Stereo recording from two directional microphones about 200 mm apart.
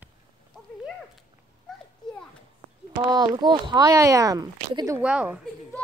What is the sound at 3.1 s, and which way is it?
Speech, 20° right (ahead or behind).